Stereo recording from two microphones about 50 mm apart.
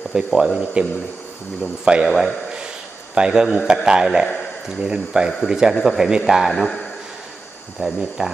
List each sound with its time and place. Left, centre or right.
0.1 s speech: centre
0.8 s a man's voice: right
6.5 s a man's voice: centre
7.8 s speech: centre